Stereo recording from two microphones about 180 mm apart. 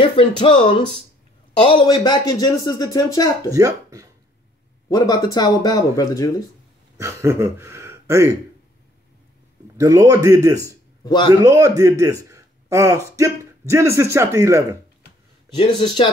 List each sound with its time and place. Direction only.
0.0 s speech: 30° left (ahead or behind)
3.5 s speech: 20° right (ahead or behind)
4.8 s speech: 20° left (ahead or behind)
7.0 s speech: 15° right (ahead or behind)
9.8 s a man's voice: 15° right (ahead or behind)
11.1 s speech: 25° left (ahead or behind)
11.3 s a man's voice: 15° right (ahead or behind)
15.5 s speech: 25° left (ahead or behind)